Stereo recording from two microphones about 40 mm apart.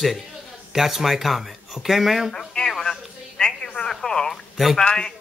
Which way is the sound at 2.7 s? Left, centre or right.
Centre.